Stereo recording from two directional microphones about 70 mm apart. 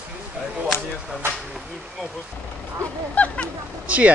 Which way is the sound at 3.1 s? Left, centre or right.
Centre.